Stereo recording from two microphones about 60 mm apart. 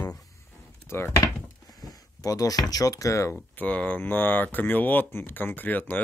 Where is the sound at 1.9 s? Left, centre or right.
Left.